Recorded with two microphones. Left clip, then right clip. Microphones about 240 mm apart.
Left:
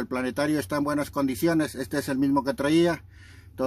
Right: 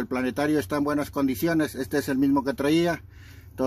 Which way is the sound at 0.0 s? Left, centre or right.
Centre.